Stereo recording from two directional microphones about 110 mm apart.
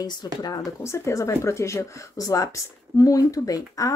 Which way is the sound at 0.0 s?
35° left (ahead or behind).